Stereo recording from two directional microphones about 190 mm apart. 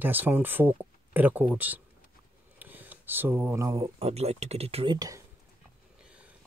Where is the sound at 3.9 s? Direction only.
35° right (ahead or behind).